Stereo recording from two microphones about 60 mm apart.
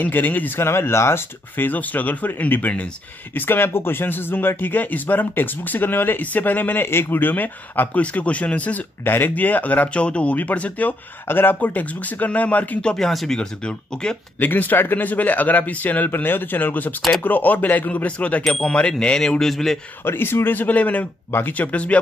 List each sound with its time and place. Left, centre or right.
0.0 s speech: left
0.7 s speech: left
1.6 s speech: left
3.3 s speech: left
9.0 s speech: left
11.2 s speech: left
12.8 s speech: centre
13.4 s speech: centre
14.4 s speech: left; by 19.8 s centre
20.1 s speech: left
21.7 s speech: left